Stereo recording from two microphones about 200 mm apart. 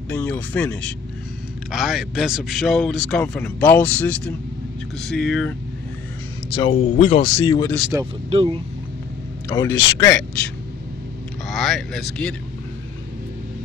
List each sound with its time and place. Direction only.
0.1 s a man's voice: 10° left (ahead or behind)
6.5 s speech: 25° left (ahead or behind)
7.9 s speech: 10° right (ahead or behind)
8.3 s speech: 30° right (ahead or behind)
9.5 s a man's voice: 20° left (ahead or behind); by 12.4 s 5° left (ahead or behind)